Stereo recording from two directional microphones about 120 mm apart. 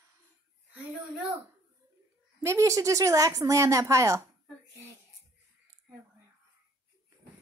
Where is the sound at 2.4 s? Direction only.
25° right (ahead or behind).